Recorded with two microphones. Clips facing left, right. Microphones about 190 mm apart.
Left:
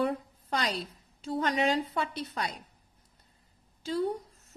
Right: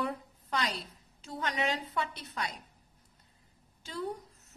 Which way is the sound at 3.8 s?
35° left (ahead or behind).